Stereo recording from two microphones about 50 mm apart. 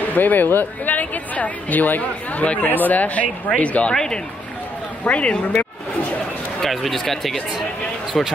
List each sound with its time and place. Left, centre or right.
0.0 s speech: left
3.9 s speech: centre
5.0 s speech: left
6.6 s speech: centre